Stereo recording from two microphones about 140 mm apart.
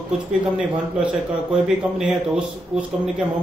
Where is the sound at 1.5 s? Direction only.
5° right (ahead or behind).